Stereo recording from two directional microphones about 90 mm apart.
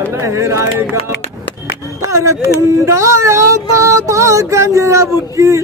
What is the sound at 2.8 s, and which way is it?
Child singing, 35° right (ahead or behind).